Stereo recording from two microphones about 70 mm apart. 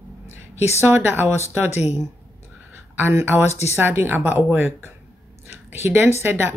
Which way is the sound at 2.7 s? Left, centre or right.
Right.